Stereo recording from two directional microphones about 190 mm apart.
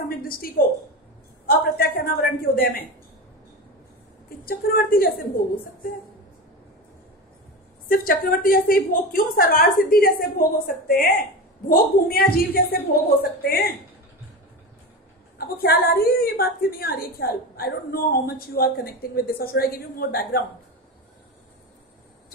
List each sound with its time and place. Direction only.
0.2 s a woman's voice: 50° left (ahead or behind)
4.5 s a woman's voice: 50° left (ahead or behind)
7.9 s a woman's voice: 50° left (ahead or behind)
15.3 s a woman's voice: 55° left (ahead or behind)